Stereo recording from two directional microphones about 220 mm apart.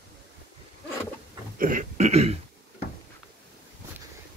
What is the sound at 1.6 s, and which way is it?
Speech, 35° right (ahead or behind).